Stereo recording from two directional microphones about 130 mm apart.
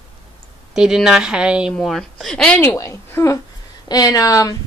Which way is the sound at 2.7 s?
20° left (ahead or behind).